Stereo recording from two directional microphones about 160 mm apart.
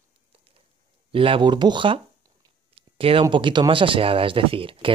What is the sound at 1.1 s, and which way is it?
Speech, 35° right (ahead or behind).